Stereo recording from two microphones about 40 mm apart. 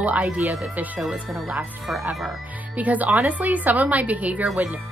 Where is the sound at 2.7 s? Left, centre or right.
Right.